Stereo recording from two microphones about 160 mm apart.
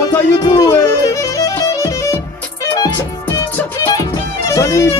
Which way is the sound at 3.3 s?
20° left (ahead or behind).